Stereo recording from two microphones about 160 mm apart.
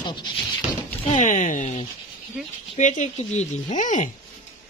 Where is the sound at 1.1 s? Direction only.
50° left (ahead or behind).